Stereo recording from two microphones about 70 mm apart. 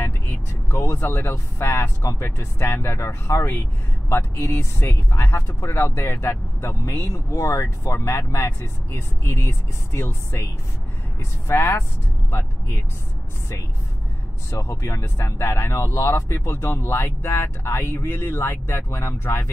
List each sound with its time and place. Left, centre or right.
0.0 s vehicle: left
0.9 s speech: left
11.4 s speech: left
14.5 s speech: left